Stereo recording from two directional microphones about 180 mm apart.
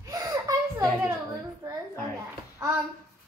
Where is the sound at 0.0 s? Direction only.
20° right (ahead or behind).